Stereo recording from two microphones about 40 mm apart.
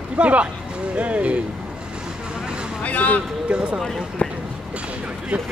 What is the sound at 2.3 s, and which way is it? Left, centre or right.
Vehicle, right.